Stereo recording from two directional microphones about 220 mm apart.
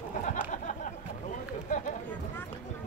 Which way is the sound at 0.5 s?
35° left (ahead or behind).